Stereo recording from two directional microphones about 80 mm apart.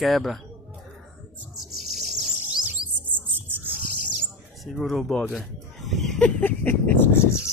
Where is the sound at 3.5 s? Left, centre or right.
Right.